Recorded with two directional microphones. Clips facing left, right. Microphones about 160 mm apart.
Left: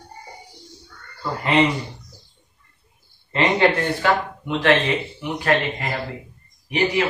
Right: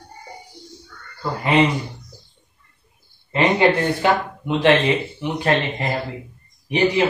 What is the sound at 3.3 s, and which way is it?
Speech, 15° right (ahead or behind).